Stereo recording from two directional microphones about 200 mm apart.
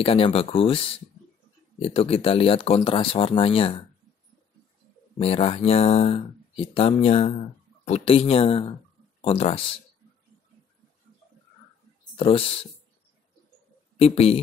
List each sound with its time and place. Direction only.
0.0 s speech: 30° left (ahead or behind)
1.8 s speech: 30° left (ahead or behind)
5.2 s speech: 30° left (ahead or behind)
12.2 s speech: 30° left (ahead or behind)
13.9 s a man's voice: 30° left (ahead or behind)